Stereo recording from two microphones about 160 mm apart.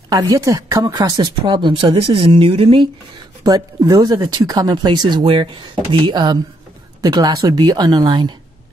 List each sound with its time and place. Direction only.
0.1 s speech: 20° right (ahead or behind)
3.4 s speech: 25° right (ahead or behind)